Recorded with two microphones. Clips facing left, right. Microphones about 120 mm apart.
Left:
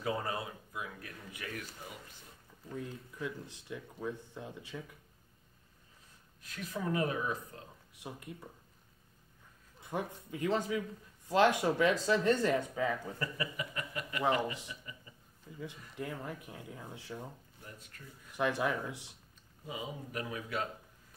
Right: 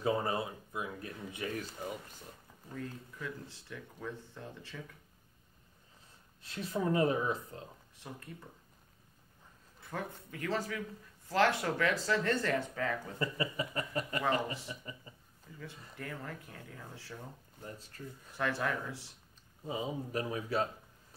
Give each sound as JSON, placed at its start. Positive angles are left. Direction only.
{"t": 0.0, "sound": "speech", "side_deg": -25}
{"t": 2.7, "sound": "speech", "side_deg": 15}
{"t": 6.4, "sound": "speech", "side_deg": -30}
{"t": 7.9, "sound": "speech", "side_deg": 15}
{"t": 9.8, "sound": "speech", "side_deg": 20}
{"t": 13.2, "sound": "a sound", "side_deg": -30}
{"t": 14.2, "sound": "speech", "side_deg": 15}
{"t": 14.7, "sound": "a sound", "side_deg": -35}
{"t": 16.0, "sound": "speech", "side_deg": 15}
{"t": 17.6, "sound": "a sound", "side_deg": -30}
{"t": 18.3, "sound": "speech", "side_deg": 15}
{"t": 19.6, "sound": "a sound", "side_deg": -30}